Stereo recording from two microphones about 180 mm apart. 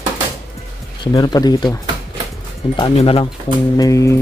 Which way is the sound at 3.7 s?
20° left (ahead or behind).